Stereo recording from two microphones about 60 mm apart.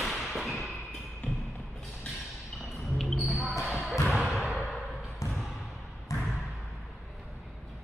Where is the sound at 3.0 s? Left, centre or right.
Centre.